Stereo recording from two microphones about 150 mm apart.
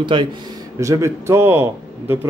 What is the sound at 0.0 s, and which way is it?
Speech, 30° right (ahead or behind).